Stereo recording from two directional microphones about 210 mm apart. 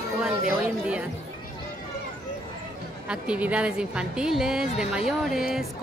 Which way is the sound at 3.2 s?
5° right (ahead or behind).